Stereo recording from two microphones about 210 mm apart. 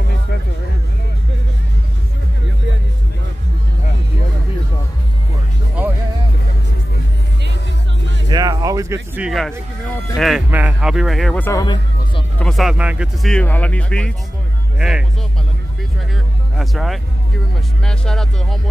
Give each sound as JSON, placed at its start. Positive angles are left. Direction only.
{"t": 8.3, "sound": "a sound", "side_deg": -20}
{"t": 10.1, "sound": "speech", "side_deg": 0}
{"t": 11.6, "sound": "music", "side_deg": 20}
{"t": 12.4, "sound": "speech", "side_deg": 0}
{"t": 16.5, "sound": "speech", "side_deg": 0}